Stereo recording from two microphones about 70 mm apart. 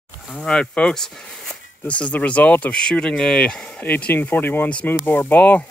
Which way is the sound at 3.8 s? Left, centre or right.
Left.